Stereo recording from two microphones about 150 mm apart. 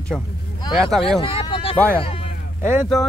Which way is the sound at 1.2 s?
40° left (ahead or behind).